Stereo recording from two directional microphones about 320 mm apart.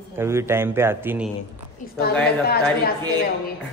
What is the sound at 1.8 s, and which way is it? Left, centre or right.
Speech, left.